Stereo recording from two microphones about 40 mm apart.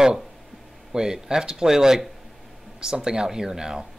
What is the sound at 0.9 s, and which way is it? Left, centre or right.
Speech, centre.